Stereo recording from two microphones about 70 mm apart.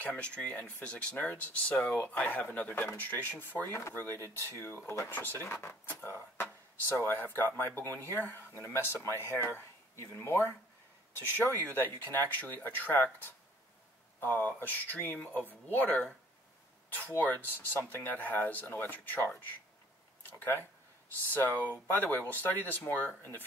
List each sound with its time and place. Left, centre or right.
0.0 s speech: centre
4.1 s speech: right
4.6 s speech: left
14.2 s speech: left